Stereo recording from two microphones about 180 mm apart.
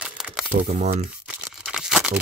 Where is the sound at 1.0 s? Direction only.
5° right (ahead or behind).